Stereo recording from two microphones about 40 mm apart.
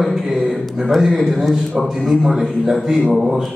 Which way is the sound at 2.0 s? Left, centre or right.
Centre.